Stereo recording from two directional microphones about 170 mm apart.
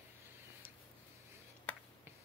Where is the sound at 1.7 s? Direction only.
10° left (ahead or behind).